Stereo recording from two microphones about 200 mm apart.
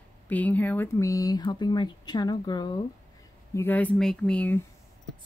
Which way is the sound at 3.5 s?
10° left (ahead or behind).